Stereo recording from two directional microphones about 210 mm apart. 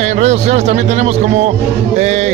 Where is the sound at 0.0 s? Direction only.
30° right (ahead or behind).